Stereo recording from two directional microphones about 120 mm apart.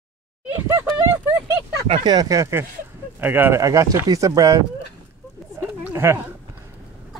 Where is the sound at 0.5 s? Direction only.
25° right (ahead or behind).